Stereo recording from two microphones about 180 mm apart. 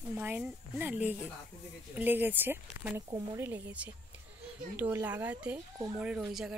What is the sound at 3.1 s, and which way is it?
Speech, 20° right (ahead or behind).